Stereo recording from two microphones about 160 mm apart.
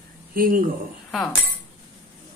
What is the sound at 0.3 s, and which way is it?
Speech, 60° right (ahead or behind).